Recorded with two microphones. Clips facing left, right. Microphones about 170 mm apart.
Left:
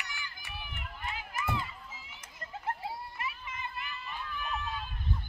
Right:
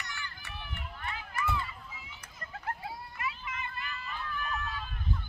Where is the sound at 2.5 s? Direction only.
25° left (ahead or behind).